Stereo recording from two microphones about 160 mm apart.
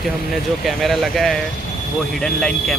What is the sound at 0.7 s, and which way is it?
Speech, centre (ahead or behind).